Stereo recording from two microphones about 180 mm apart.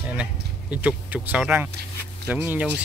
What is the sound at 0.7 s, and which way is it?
Speech, 10° right (ahead or behind).